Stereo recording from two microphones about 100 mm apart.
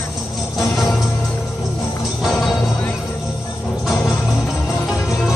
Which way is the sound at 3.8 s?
Centre (ahead or behind).